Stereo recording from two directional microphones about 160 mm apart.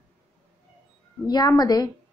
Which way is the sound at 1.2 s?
25° left (ahead or behind).